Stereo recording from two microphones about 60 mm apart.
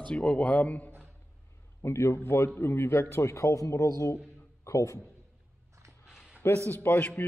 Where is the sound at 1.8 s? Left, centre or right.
Left.